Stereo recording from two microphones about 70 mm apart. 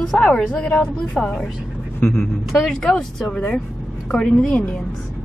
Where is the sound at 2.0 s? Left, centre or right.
Left.